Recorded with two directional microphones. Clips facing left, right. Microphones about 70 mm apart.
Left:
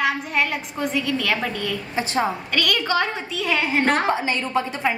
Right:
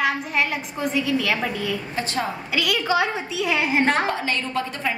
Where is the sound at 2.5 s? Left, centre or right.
Centre.